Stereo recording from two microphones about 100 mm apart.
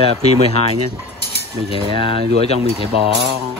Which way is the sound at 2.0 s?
75° left (ahead or behind).